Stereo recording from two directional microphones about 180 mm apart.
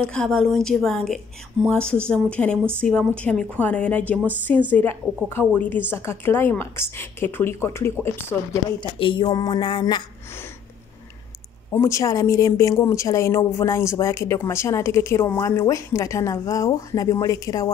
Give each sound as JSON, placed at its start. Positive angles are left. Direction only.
{"t": 0.0, "sound": "a woman's voice", "side_deg": 5}
{"t": 8.9, "sound": "a woman's voice", "side_deg": 25}
{"t": 11.7, "sound": "a woman's voice", "side_deg": 15}